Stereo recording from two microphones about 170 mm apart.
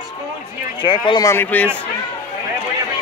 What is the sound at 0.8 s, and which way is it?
Speech, 30° left (ahead or behind).